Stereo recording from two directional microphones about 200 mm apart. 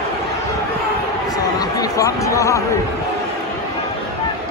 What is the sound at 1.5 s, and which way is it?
Chatter, 20° left (ahead or behind).